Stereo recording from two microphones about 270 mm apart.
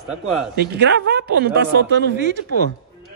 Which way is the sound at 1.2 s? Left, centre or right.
Right.